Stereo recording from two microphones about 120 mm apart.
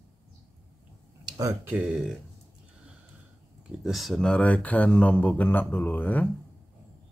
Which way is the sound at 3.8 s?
Centre (ahead or behind).